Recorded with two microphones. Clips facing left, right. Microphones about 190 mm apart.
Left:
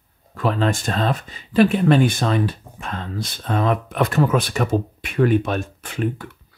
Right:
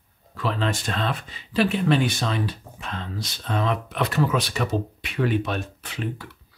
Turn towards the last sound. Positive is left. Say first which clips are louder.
# left 7 dB
turn(degrees=50)  # may be behind; listen again after turning